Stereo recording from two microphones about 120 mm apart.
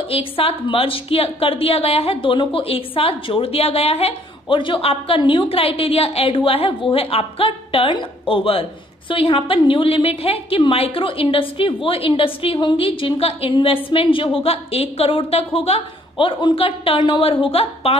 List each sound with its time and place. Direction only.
0.1 s a woman's voice: 50° left (ahead or behind)